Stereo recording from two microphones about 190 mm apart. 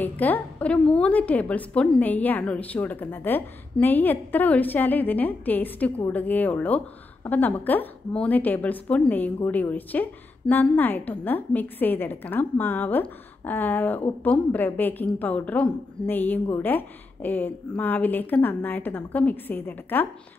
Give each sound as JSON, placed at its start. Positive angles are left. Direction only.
{"t": 0.0, "sound": "a woman's voice", "side_deg": 10}